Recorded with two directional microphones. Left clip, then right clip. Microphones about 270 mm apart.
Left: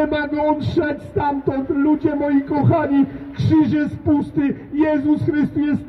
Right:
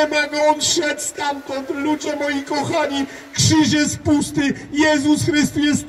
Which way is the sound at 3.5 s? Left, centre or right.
Right.